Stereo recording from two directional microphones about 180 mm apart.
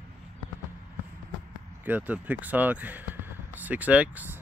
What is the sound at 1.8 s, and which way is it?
Speech, 10° right (ahead or behind).